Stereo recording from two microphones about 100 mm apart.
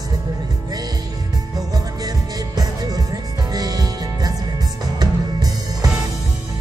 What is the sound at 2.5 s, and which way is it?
Music, 40° right (ahead or behind).